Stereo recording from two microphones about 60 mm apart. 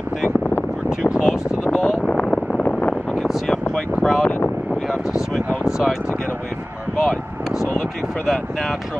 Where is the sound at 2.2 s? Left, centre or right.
Centre.